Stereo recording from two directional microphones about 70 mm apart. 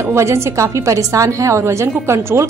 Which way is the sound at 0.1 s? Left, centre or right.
Right.